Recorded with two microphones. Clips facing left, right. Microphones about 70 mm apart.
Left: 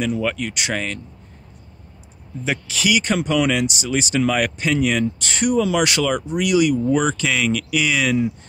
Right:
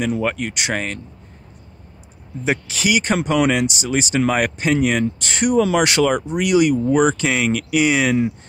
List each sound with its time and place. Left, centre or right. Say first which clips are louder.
0.2 s speech: right 1 dB; right
2.4 s speech: right 2 dB; right
6.9 s speech: right 3 dB; centre